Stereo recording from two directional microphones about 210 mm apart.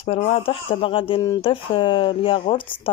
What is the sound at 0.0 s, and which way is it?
Speech, 30° left (ahead or behind).